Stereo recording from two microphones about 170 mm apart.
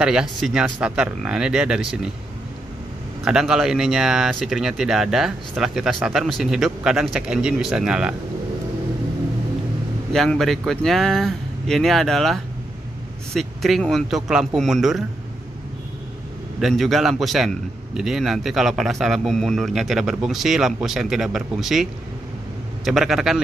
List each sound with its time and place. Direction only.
0.0 s a man's voice: 5° right (ahead or behind)
3.3 s a man's voice: 5° right (ahead or behind)
10.1 s a man's voice: centre (ahead or behind)
16.5 s a man's voice: centre (ahead or behind)
22.8 s a man's voice: centre (ahead or behind)